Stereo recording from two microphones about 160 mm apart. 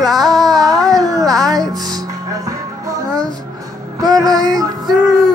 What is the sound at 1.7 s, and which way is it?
Music, 25° right (ahead or behind).